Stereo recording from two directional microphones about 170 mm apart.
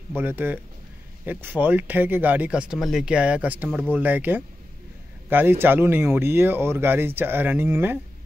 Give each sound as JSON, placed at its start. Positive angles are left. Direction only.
{"t": 0.1, "sound": "speech", "side_deg": -15}